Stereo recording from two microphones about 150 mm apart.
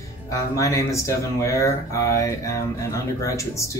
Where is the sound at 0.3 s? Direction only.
20° left (ahead or behind).